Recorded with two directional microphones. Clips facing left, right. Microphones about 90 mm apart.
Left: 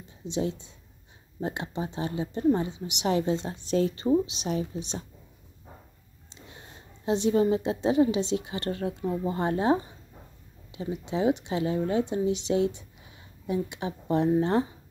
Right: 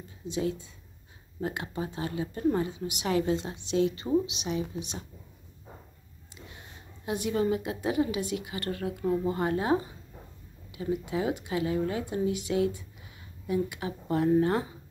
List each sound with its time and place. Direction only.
0.2 s speech: 30° left (ahead or behind)
7.1 s speech: 30° left (ahead or behind)